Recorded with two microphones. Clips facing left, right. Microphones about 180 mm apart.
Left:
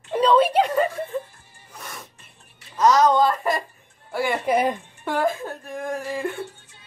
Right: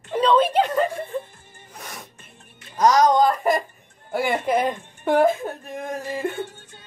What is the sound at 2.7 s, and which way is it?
Music, 15° right (ahead or behind).